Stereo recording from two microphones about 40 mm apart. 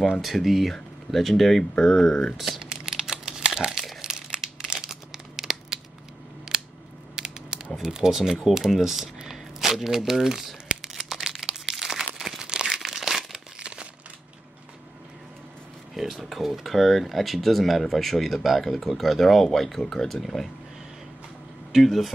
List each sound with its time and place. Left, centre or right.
0.2 s speech: centre
2.3 s speech: centre
2.6 s crumpling: centre
6.5 s scissors: centre
7.2 s a sound: centre
7.7 s speech: centre
8.5 s crumpling: centre
12.7 s crumpling: centre
13.6 s crumpling: right
15.9 s speech: centre
21.8 s speech: centre